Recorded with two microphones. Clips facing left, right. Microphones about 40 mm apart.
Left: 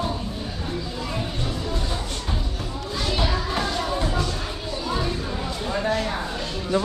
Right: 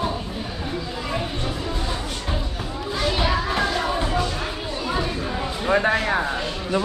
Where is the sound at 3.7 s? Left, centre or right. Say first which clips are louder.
Right 2 dB; right.